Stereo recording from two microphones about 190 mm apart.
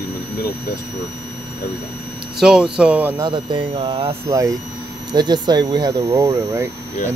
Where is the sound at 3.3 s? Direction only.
25° right (ahead or behind).